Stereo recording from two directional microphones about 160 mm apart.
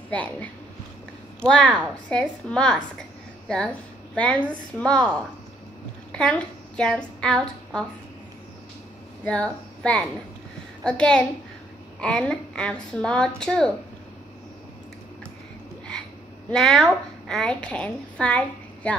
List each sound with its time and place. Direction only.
0.1 s a woman's voice: 10° left (ahead or behind)
1.5 s a woman's voice: 5° left (ahead or behind)
9.2 s a woman's voice: 5° left (ahead or behind)
16.4 s a woman's voice: 5° left (ahead or behind)